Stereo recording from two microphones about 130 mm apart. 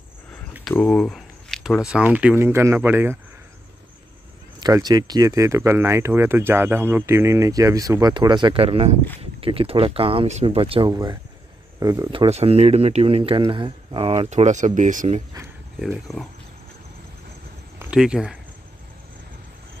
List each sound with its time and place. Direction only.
0.7 s a sound: 5° left (ahead or behind)
1.9 s speech: 10° right (ahead or behind)
4.6 s speech: 30° right (ahead or behind)
10.2 s speech: 55° right (ahead or behind)
11.8 s speech: 25° right (ahead or behind)
12.1 s speech: 45° right (ahead or behind); by 15.2 s 70° right (ahead or behind)
15.9 s speech: centre (ahead or behind)
17.9 s speech: 5° right (ahead or behind)